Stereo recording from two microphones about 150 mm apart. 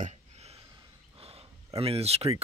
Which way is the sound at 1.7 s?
40° right (ahead or behind).